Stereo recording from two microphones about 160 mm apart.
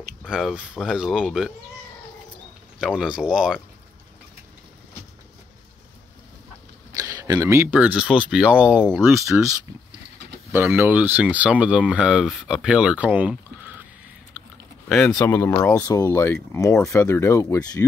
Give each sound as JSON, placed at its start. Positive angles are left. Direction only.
{"t": 0.3, "sound": "speech", "side_deg": -5}
{"t": 2.8, "sound": "speech", "side_deg": -5}
{"t": 6.9, "sound": "speech", "side_deg": -20}
{"t": 10.5, "sound": "speech", "side_deg": -15}
{"t": 15.1, "sound": "speech", "side_deg": 15}